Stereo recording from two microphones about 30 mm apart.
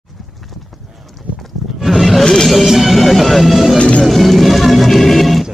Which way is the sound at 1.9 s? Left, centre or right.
Centre.